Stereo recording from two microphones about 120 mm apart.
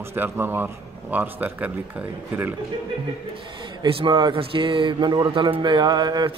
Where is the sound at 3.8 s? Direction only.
40° right (ahead or behind).